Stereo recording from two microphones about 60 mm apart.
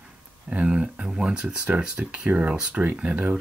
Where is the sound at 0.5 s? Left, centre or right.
Right.